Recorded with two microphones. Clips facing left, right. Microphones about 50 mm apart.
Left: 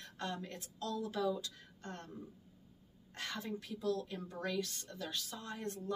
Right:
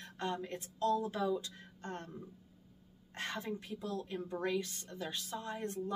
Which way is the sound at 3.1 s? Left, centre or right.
Right.